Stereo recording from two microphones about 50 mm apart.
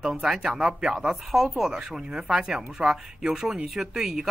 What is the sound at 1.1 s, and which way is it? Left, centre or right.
Speech, centre.